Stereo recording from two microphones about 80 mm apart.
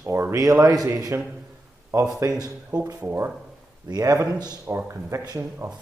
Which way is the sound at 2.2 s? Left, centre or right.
Right.